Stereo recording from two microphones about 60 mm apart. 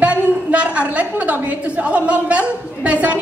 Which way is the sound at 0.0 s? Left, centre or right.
Right.